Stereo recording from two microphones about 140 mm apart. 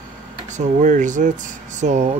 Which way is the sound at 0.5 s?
60° right (ahead or behind).